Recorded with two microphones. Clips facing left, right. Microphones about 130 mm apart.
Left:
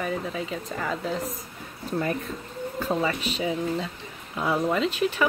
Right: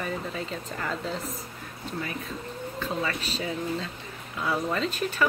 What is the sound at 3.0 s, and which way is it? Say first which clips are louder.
Speech: left 4 dB; 15° left (ahead or behind).